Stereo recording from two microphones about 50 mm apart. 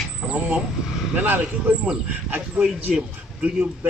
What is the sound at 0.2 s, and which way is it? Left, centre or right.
Speech, centre.